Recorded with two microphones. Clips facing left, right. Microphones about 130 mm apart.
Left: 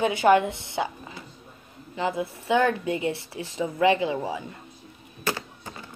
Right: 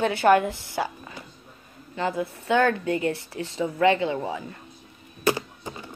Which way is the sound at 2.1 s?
15° left (ahead or behind).